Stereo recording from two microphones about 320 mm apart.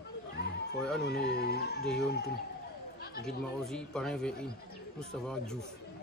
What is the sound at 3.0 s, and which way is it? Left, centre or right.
Chatter, left.